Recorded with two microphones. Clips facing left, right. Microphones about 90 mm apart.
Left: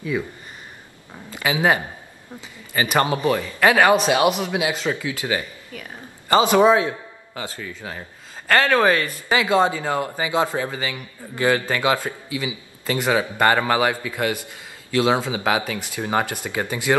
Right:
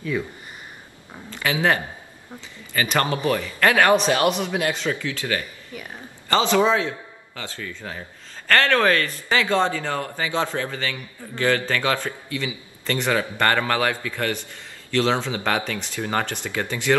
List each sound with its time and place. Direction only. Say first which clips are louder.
0.1 s speech: left 2 dB; 10° left (ahead or behind)
1.3 s a man's voice: left 2 dB; 10° left (ahead or behind)